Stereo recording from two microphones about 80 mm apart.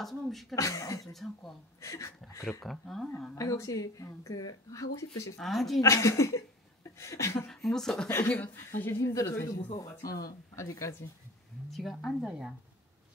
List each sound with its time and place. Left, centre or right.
0.0 s speech: centre
0.6 s speech: left
1.0 s speech: centre
1.8 s speech: left
2.6 s speech: centre
3.3 s speech: left
5.4 s speech: centre
5.8 s speech: left
7.4 s speech: centre
8.3 s speech: left
9.0 s speech: left
11.7 s speech: centre
12.3 s speech: centre